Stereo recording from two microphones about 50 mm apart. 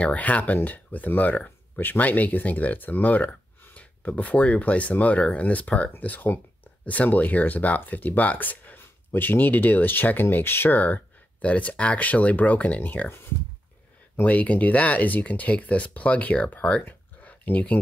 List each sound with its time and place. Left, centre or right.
0.0 s speech: left
11.4 s speech: left
14.2 s speech: left
17.2 s a sound: left